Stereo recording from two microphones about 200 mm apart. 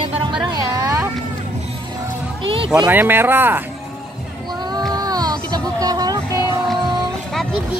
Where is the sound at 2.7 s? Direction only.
10° right (ahead or behind).